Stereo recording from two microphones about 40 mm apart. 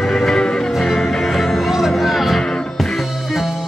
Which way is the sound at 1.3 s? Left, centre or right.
Centre.